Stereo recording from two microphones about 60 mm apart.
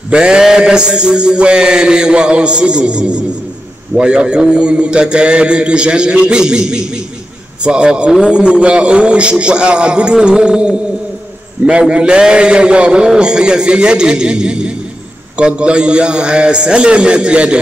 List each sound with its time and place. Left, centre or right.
0.1 s a man's voice: centre
11.9 s a man's voice: centre